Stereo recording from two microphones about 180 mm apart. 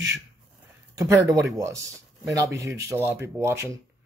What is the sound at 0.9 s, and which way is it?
Speech, 15° right (ahead or behind).